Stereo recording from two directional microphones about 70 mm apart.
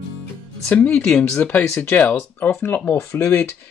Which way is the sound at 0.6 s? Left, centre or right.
Centre.